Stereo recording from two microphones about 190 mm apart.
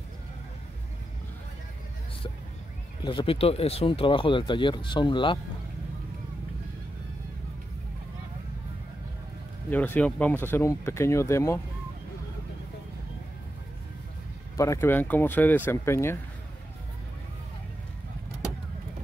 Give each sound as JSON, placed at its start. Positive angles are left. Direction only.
{"t": 3.0, "sound": "speech", "side_deg": 25}
{"t": 9.7, "sound": "speech", "side_deg": 10}
{"t": 14.6, "sound": "speech", "side_deg": 15}